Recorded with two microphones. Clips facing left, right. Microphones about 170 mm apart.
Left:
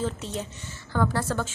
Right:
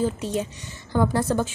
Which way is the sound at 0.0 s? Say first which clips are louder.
Right 6 dB; 15° right (ahead or behind).